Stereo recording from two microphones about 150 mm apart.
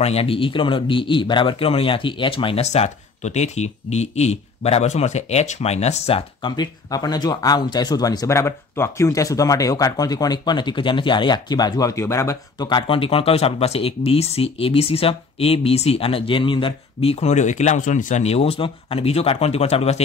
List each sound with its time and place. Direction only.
0.0 s a man's voice: 40° left (ahead or behind)